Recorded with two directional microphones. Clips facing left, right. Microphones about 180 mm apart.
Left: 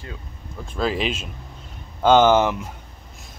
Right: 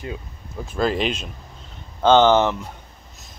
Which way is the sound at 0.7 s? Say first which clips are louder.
Right 2 dB; centre (ahead or behind).